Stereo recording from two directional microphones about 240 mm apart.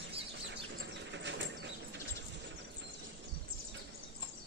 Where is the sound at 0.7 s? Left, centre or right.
Right.